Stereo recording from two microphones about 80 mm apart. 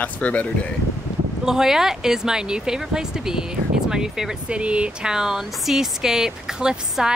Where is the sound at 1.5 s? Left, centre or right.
Centre.